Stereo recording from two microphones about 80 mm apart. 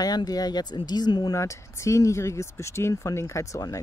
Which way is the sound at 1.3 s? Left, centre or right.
Left.